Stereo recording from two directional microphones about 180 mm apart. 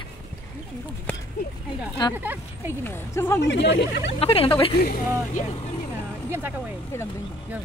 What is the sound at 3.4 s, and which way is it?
Speech, 80° left.